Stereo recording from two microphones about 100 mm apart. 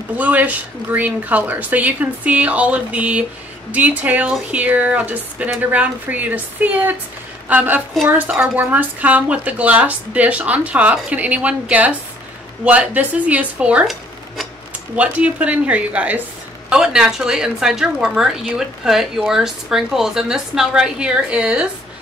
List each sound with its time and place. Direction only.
0.2 s speech: 15° right (ahead or behind)
13.8 s stir: centre (ahead or behind)
15.0 s a woman's voice: 15° right (ahead or behind)